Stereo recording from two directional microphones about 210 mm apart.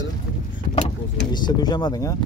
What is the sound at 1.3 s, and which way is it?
Speech, 20° left (ahead or behind).